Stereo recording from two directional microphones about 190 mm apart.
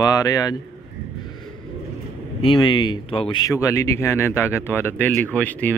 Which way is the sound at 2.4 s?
25° left (ahead or behind).